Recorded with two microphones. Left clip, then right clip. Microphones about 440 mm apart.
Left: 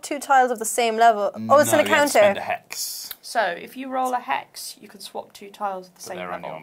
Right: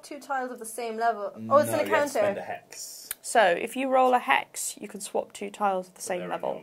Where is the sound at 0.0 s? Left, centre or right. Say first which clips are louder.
Left 14 dB; left.